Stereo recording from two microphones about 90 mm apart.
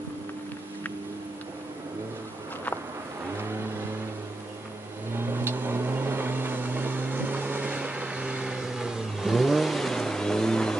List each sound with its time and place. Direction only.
5.1 s vehicle: 25° right (ahead or behind); by 10.8 s 5° left (ahead or behind)